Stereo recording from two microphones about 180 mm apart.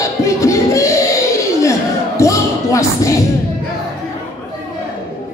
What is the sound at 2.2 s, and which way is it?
Music, 15° left (ahead or behind).